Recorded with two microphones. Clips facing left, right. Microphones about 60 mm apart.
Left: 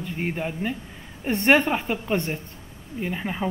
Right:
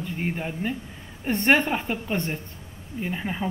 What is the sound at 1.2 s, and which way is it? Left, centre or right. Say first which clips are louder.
Speech: left 2 dB; left.